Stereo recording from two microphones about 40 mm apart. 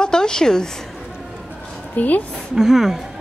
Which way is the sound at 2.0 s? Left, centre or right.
Left.